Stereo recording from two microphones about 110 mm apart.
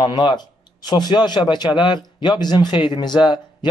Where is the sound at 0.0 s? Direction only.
45° left (ahead or behind).